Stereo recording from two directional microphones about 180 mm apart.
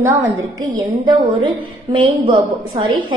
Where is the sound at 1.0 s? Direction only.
30° right (ahead or behind).